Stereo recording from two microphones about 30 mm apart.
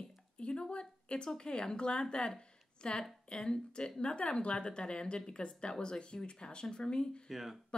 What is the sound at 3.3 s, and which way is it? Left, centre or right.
Speech, left.